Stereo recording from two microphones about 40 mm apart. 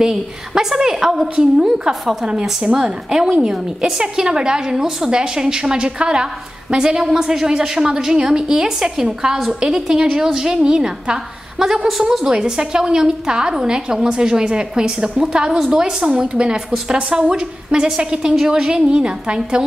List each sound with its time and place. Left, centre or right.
0.0 s a woman's voice: centre
2.2 s a woman's voice: right